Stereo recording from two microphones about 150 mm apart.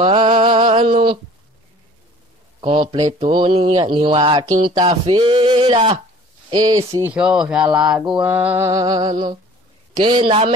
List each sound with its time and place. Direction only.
0.0 s a sound: 35° right (ahead or behind)
2.6 s mantra: 35° right (ahead or behind)
4.6 s a sound: 35° right (ahead or behind)
6.5 s speech: 25° right (ahead or behind)
7.1 s music: 5° right (ahead or behind); by 9.4 s 30° right (ahead or behind)
10.0 s mantra: 35° right (ahead or behind)